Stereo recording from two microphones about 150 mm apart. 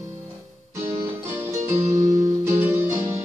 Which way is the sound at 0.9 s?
20° right (ahead or behind).